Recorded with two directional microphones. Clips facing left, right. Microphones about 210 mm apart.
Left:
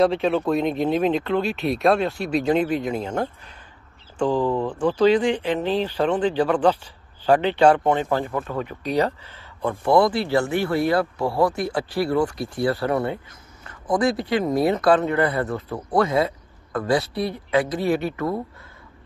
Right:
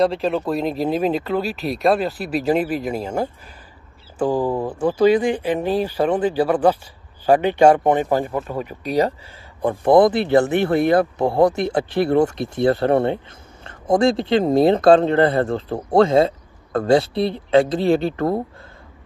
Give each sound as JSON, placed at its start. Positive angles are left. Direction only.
{"t": 0.0, "sound": "speech", "side_deg": 0}